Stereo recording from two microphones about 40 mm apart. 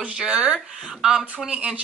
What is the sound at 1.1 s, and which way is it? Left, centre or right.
Speech, right.